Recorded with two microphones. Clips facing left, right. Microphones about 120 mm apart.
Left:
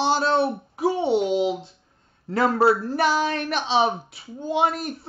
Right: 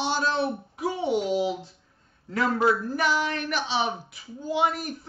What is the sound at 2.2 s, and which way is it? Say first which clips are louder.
Speech: left 4 dB; 35° left (ahead or behind).